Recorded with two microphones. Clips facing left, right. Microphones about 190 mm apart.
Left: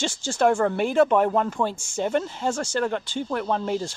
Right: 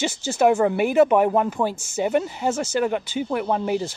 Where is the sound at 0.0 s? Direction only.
5° right (ahead or behind).